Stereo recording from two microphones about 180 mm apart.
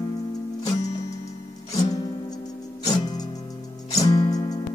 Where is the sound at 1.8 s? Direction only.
20° left (ahead or behind).